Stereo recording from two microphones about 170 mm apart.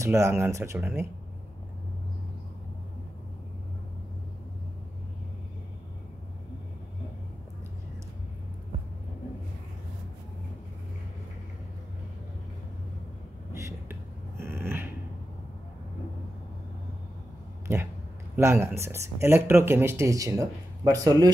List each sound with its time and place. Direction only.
0.0 s speech: 15° right (ahead or behind)
13.5 s a sound: 15° right (ahead or behind)
18.3 s speech: 15° right (ahead or behind)